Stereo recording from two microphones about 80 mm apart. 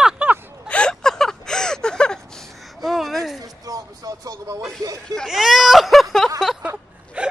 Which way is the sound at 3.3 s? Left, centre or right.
Right.